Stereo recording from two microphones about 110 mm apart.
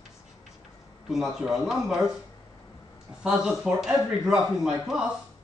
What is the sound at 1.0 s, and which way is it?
Speech, 5° right (ahead or behind).